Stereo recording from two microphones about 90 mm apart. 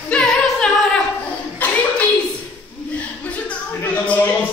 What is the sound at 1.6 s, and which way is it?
Clapping, 15° left (ahead or behind).